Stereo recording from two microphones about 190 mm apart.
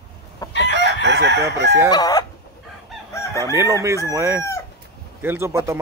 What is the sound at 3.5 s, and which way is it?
Chicken, 15° right (ahead or behind).